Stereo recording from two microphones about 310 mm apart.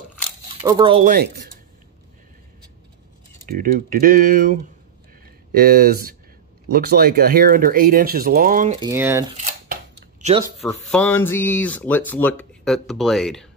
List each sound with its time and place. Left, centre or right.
0.7 s speech: centre; by 1.5 s right
3.4 s speech: right
8.7 s speech: centre
9.4 s a sound: right
10.7 s speech: centre